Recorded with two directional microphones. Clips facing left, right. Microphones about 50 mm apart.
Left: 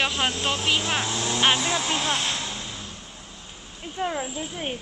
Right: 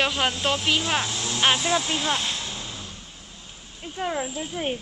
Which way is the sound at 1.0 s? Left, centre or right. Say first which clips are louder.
Left 2 dB; left.